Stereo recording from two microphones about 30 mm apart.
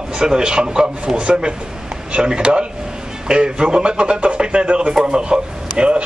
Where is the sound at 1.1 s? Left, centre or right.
Right.